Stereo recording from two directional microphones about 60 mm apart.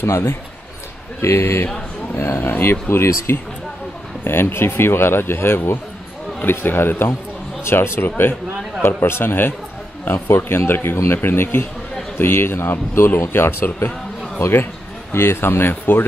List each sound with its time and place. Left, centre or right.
0.0 s speech: left